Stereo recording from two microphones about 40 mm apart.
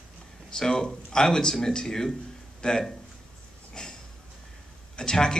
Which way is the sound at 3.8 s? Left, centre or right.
Left.